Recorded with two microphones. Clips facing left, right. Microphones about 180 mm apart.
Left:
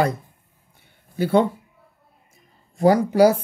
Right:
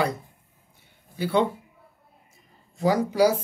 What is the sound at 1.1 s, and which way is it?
Speech, 45° left (ahead or behind).